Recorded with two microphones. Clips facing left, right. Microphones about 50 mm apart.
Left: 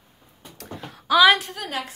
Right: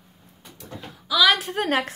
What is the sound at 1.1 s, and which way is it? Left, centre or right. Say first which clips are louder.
Speech: left 4 dB; left.